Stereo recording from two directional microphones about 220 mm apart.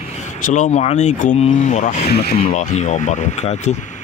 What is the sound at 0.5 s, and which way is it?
Speech, 30° left (ahead or behind).